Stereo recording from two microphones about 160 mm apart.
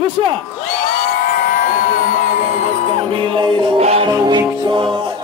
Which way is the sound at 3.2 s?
30° right (ahead or behind).